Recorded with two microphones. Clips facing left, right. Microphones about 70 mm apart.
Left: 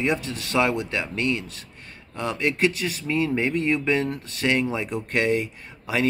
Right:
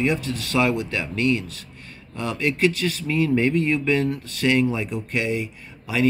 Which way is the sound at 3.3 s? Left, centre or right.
Centre.